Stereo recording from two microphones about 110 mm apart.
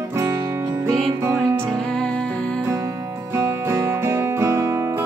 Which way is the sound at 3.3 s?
25° right (ahead or behind).